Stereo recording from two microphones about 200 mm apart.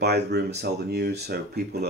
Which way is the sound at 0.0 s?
55° right (ahead or behind).